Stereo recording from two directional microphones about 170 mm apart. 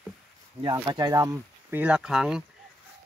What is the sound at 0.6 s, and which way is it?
Speech, 25° right (ahead or behind).